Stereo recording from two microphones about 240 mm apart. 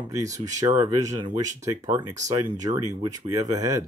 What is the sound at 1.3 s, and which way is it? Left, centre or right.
Speech, right.